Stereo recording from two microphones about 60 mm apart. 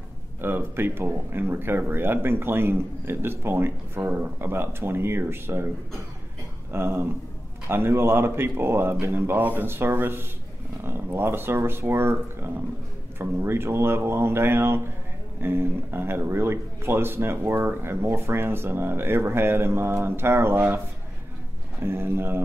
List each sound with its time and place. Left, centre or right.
0.4 s speech: right
6.7 s speech: right
21.8 s speech: right